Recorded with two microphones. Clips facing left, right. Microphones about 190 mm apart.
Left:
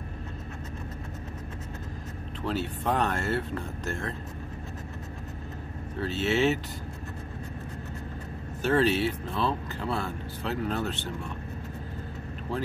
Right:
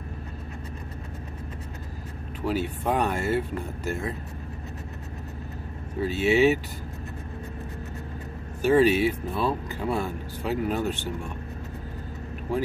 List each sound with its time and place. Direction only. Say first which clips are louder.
2.4 s speech: right 3 dB; 10° right (ahead or behind)
5.9 s speech: right 5 dB; 10° right (ahead or behind)
8.6 s speech: right 5 dB; 10° right (ahead or behind)
12.5 s speech: right 5 dB; 15° right (ahead or behind)